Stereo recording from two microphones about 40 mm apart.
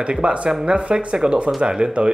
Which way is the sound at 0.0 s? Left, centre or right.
Right.